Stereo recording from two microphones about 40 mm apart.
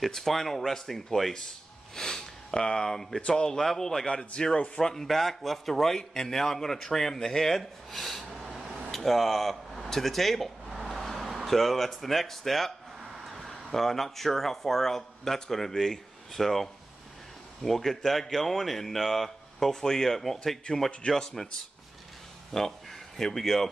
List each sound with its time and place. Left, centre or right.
0.0 s a man's voice: centre
3.2 s speech: left
3.5 s a man's voice: centre
8.9 s speech: centre
10.7 s a sound: centre
13.5 s a man's voice: centre
22.5 s speech: centre